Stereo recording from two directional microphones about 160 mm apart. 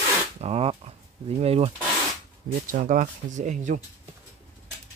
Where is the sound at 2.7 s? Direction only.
50° right (ahead or behind).